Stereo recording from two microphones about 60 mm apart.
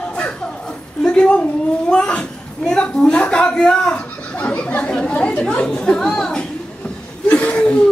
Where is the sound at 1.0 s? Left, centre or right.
Centre.